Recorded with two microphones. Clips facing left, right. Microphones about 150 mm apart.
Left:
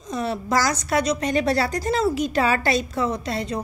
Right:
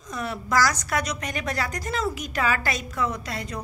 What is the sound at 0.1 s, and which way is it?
A woman's voice, 25° left (ahead or behind).